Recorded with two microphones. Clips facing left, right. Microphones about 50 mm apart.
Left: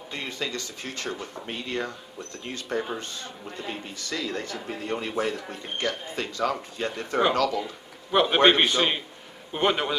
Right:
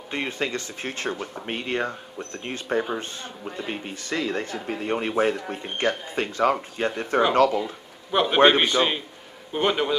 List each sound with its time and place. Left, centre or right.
0.1 s speech: right
2.5 s speech: right
8.1 s a man's voice: centre